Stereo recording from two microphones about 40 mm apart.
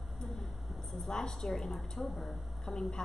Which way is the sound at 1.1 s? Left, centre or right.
Centre.